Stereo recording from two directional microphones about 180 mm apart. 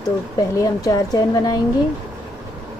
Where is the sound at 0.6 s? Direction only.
20° left (ahead or behind).